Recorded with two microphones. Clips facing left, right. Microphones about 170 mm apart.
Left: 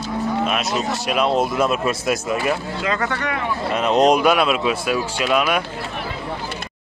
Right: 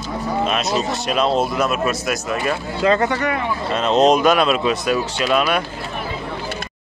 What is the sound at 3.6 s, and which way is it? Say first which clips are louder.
Speech: right 1 dB; 15° left (ahead or behind).